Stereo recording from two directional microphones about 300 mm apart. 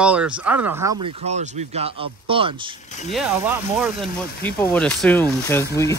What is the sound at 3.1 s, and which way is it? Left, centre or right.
Speech, centre.